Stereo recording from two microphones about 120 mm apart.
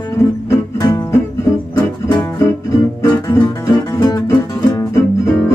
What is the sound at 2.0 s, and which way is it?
Music, 25° left (ahead or behind).